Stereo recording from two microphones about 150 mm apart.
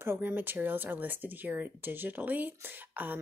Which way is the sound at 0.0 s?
15° right (ahead or behind).